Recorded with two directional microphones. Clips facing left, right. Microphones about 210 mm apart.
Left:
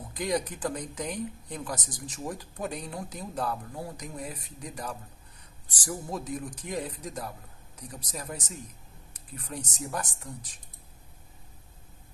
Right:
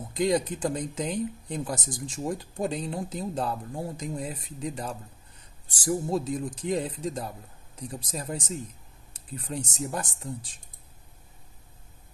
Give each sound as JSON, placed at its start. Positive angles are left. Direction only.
{"t": 0.1, "sound": "speech", "side_deg": -25}